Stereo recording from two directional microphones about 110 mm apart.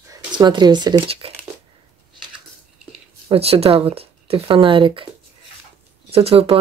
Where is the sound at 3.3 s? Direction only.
65° right (ahead or behind).